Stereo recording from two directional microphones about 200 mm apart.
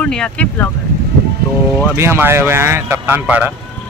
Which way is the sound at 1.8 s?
10° right (ahead or behind).